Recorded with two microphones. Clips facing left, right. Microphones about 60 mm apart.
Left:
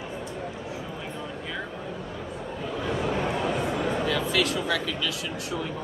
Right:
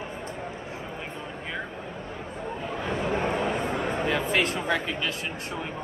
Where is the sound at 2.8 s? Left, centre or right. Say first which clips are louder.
Even; right.